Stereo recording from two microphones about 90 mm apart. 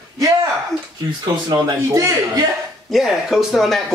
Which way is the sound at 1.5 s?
35° right (ahead or behind).